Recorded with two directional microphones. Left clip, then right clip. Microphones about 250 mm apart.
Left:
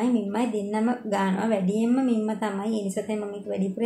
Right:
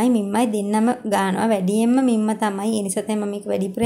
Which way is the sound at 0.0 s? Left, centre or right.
Right.